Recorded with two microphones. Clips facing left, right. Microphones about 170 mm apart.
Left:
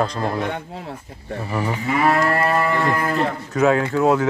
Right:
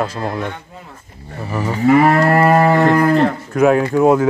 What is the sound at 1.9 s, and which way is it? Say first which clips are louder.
Moo: right 8 dB; 45° right (ahead or behind).